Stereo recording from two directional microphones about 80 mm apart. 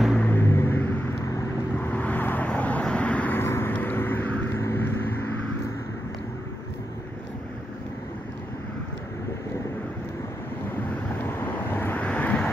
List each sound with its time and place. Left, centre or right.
0.2 s a sound: left
1.8 s vehicle: left
3.3 s vehicle: left
11.2 s vehicle: left